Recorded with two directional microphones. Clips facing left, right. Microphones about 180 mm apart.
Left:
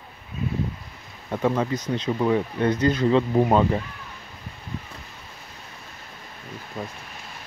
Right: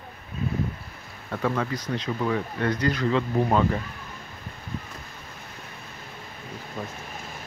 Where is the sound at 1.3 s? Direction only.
20° left (ahead or behind).